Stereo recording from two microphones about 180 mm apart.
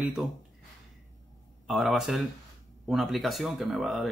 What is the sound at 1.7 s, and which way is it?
Speech, centre (ahead or behind).